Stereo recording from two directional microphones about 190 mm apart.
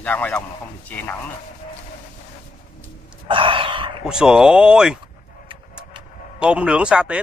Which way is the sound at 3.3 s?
25° right (ahead or behind).